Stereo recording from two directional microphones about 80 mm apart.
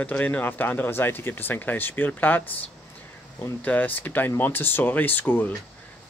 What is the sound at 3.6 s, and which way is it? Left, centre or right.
Speech, left.